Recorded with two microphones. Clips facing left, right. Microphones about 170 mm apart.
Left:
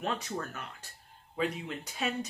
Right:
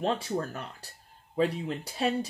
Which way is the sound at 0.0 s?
30° right (ahead or behind).